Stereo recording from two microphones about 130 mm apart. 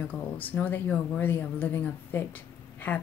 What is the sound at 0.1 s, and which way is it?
Speech, 15° left (ahead or behind).